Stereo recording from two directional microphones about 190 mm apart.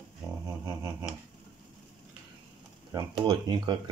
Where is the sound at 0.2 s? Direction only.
10° right (ahead or behind).